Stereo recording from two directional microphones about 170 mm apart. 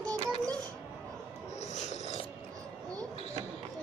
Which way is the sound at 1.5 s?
40° left (ahead or behind).